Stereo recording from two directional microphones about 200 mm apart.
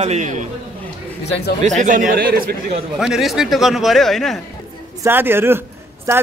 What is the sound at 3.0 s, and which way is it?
A man's voice, centre (ahead or behind).